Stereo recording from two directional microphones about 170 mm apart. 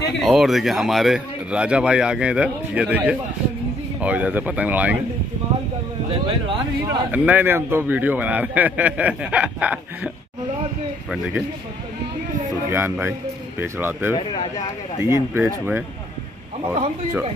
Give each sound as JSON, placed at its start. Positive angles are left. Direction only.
{"t": 0.2, "sound": "a man's voice", "side_deg": 0}
{"t": 6.2, "sound": "speech", "side_deg": -25}
{"t": 7.1, "sound": "a man's voice", "side_deg": -10}
{"t": 12.6, "sound": "a man's voice", "side_deg": -10}
{"t": 14.1, "sound": "speech", "side_deg": 30}
{"t": 15.0, "sound": "a man's voice", "side_deg": -15}